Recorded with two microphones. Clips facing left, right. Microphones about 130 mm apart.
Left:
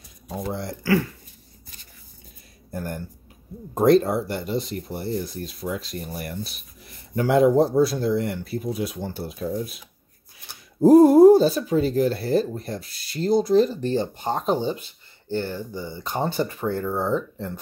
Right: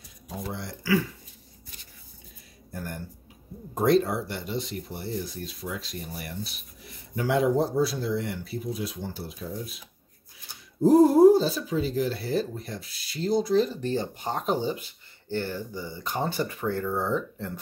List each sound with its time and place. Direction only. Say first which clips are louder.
0.5 s speech: left 7 dB; 45° left (ahead or behind)
2.7 s a sound: left 6 dB; 50° left (ahead or behind)
3.7 s speech: left 5 dB; 45° left (ahead or behind)
13.9 s speech: left 5 dB; 25° left (ahead or behind)